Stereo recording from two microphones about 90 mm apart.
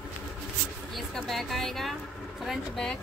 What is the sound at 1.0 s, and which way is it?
A woman's voice, centre (ahead or behind).